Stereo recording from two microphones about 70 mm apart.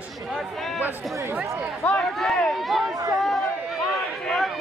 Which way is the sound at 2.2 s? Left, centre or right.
Centre.